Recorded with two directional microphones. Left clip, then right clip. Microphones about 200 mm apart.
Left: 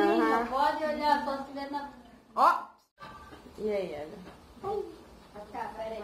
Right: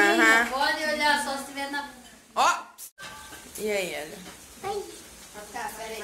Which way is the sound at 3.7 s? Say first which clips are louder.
Right 4 dB; 25° right (ahead or behind).